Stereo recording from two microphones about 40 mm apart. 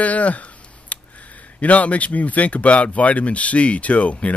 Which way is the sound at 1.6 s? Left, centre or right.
Left.